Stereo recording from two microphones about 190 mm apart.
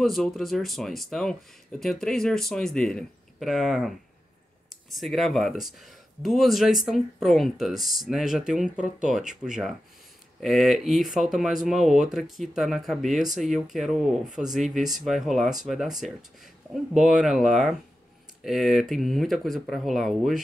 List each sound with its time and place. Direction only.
0.0 s speech: centre (ahead or behind)
4.9 s speech: centre (ahead or behind)